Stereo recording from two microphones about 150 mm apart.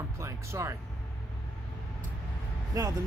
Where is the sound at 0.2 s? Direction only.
20° right (ahead or behind).